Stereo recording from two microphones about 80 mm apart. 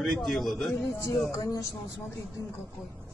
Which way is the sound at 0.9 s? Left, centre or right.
Left.